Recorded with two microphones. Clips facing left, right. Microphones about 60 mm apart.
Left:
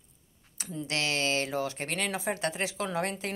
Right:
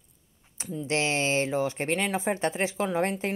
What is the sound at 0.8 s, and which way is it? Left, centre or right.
Speech, right.